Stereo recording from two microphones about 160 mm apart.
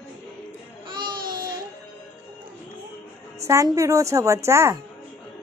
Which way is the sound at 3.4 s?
20° right (ahead or behind).